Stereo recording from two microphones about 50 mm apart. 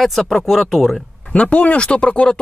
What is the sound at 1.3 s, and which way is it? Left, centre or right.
Speech, left.